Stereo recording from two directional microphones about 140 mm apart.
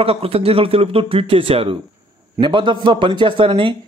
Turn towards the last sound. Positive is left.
turn(degrees=-35)  # may be behind; listen again after turning